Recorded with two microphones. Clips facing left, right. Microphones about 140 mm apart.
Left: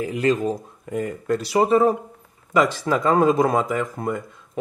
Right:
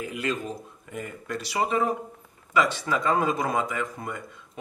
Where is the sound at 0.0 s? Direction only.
40° left (ahead or behind).